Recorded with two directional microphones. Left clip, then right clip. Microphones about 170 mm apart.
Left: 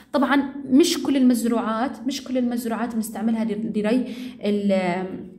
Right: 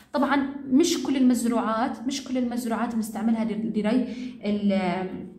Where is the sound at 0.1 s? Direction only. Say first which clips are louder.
Left 3 dB; 40° left (ahead or behind).